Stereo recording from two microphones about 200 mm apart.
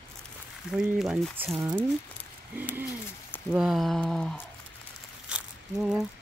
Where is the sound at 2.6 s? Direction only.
10° right (ahead or behind).